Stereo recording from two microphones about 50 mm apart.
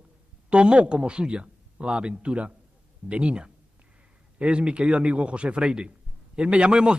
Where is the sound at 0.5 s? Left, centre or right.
Right.